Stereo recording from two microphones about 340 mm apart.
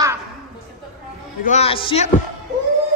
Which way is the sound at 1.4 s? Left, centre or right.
Centre.